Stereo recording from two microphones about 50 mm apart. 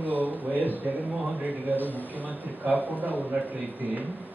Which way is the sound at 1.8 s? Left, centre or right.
Left.